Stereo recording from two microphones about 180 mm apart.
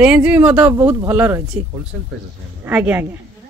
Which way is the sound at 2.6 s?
10° right (ahead or behind).